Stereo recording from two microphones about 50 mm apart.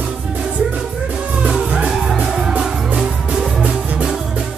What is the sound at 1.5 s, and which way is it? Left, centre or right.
Music, centre.